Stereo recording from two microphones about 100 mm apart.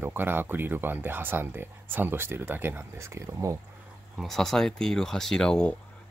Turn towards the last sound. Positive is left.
turn(degrees=10)  # may be behind; listen again after turning